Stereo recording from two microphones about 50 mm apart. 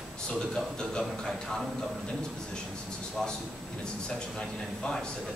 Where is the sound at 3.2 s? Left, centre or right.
Centre.